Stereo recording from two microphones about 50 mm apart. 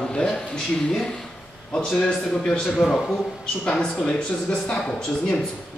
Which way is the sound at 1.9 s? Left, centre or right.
Centre.